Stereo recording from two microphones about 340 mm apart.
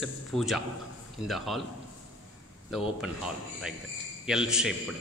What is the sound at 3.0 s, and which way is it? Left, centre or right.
Speech, centre.